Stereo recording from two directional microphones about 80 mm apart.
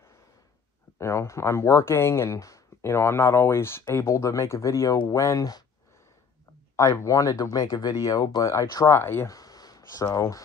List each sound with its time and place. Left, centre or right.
0.9 s speech: left
2.9 s speech: left
6.8 s speech: left
9.3 s a sound: left
10.1 s speech: left